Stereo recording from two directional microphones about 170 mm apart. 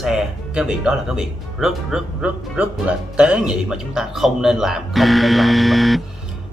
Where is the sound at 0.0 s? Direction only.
5° right (ahead or behind).